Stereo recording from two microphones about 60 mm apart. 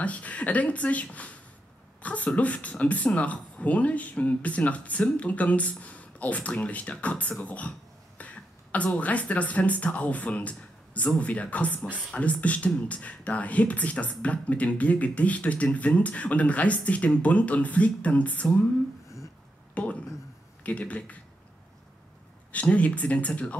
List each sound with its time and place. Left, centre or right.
0.0 s speech: left
8.2 s a sound: left
8.7 s speech: left
19.7 s speech: left
22.5 s speech: left